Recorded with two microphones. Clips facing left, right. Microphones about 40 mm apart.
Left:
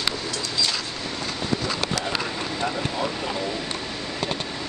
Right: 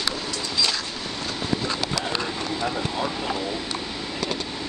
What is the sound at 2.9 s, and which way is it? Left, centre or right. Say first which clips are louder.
Speech: even; centre.